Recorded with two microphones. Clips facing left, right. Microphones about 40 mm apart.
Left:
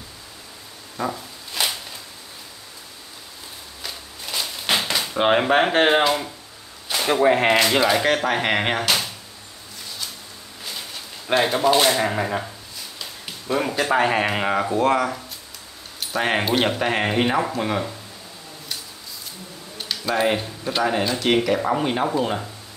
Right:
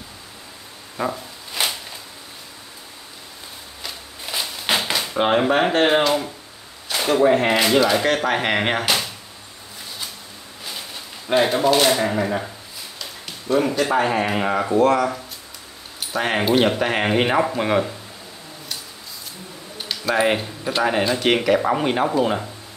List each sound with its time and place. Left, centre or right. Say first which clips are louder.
0.9 s zipper: right 2 dB; centre
4.3 s a sound: right 1 dB; centre
5.3 s speech: even; centre
7.2 s speech: left 1 dB; centre
8.2 s speech: right 1 dB; centre
11.5 s speech: right 1 dB; centre
13.0 s a sound: right 2 dB; centre
13.9 s speech: left 3 dB; left; by 17.9 s centre
19.8 s a sound: right 2 dB; centre
20.8 s speech: right 2 dB; centre